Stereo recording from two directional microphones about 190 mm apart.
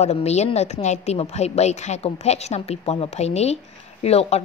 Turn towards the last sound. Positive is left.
turn(degrees=35)  # may be behind; listen again after turning